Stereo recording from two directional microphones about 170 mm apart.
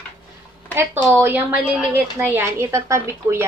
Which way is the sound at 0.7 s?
10° right (ahead or behind).